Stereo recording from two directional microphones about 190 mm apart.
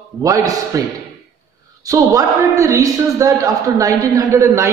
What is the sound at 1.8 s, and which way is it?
Speech, 20° right (ahead or behind).